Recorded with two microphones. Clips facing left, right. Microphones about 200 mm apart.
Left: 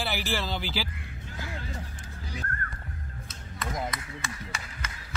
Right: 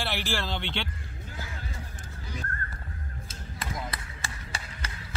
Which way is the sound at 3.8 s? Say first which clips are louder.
Left 3 dB; 30° right (ahead or behind).